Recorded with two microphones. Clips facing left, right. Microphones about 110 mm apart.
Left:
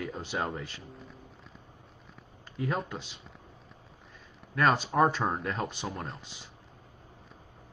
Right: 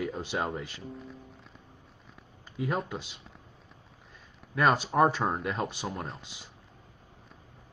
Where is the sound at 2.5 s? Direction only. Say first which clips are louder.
Right 1 dB; 5° right (ahead or behind).